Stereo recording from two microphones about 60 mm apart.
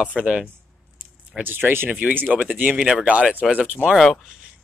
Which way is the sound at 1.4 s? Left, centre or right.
Right.